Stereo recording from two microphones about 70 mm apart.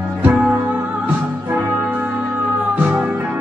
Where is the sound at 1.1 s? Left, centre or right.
Right.